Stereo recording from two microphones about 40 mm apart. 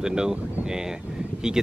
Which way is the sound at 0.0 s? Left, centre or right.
Centre.